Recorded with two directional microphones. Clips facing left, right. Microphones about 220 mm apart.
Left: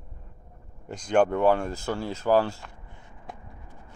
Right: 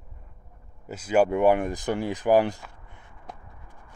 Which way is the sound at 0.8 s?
5° right (ahead or behind).